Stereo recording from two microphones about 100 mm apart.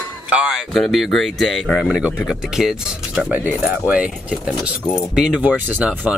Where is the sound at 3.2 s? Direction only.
15° right (ahead or behind).